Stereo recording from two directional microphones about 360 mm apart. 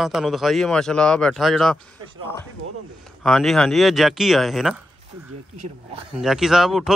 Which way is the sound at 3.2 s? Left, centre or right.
Centre.